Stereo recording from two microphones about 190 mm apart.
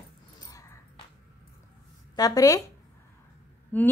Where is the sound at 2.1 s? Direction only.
20° left (ahead or behind).